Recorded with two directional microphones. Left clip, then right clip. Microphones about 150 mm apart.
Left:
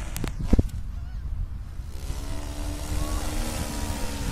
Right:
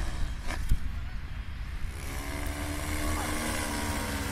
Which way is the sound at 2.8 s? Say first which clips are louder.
Right 1 dB; 30° left (ahead or behind).